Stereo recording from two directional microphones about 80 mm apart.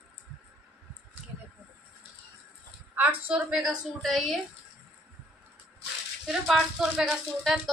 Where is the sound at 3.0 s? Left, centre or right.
Centre.